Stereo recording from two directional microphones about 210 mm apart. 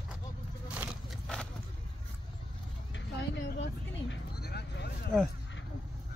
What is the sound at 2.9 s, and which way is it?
Vehicle, 55° left (ahead or behind).